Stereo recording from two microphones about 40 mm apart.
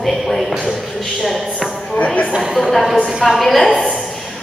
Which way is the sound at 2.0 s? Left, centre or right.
Left.